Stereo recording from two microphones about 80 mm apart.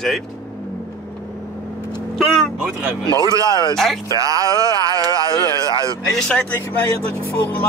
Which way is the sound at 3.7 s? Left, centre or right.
Centre.